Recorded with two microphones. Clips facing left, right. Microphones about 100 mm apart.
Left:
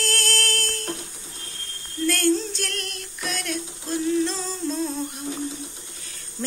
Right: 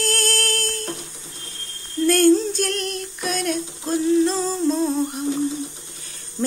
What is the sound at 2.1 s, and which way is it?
Female singing, 15° right (ahead or behind).